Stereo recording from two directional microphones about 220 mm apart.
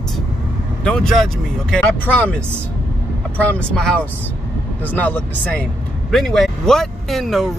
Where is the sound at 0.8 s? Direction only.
5° left (ahead or behind).